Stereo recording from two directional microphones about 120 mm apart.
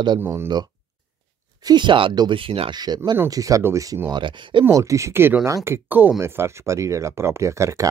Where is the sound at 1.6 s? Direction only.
40° right (ahead or behind).